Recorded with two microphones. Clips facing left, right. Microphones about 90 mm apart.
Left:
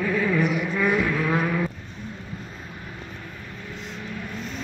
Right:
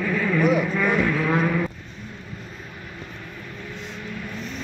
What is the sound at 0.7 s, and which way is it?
Vehicle, 15° left (ahead or behind).